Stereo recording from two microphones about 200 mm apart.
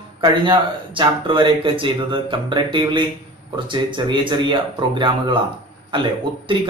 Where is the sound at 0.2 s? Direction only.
25° right (ahead or behind).